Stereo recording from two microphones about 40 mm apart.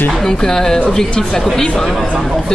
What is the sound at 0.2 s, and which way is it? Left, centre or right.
A woman's voice, centre.